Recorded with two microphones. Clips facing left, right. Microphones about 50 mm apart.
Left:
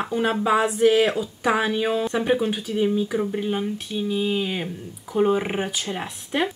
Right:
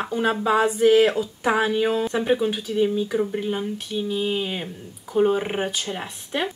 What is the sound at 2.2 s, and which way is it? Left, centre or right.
Speech, centre.